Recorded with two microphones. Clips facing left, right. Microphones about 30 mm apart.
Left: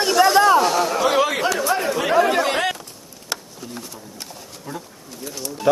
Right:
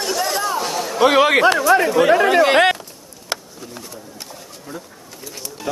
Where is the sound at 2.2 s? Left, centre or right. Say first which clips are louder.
Right 5 dB; right.